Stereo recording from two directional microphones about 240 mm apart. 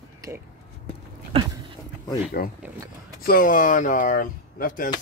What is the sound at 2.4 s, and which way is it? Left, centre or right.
Speech, left.